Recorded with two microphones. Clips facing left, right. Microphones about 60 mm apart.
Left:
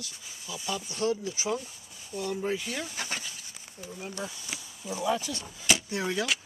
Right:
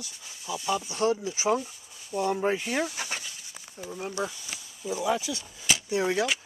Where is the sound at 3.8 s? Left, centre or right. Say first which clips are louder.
Right 5 dB; right.